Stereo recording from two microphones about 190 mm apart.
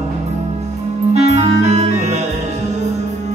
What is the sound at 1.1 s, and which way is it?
Music, 35° right (ahead or behind).